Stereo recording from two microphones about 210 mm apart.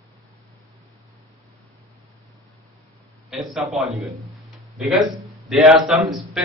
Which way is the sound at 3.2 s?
Centre (ahead or behind).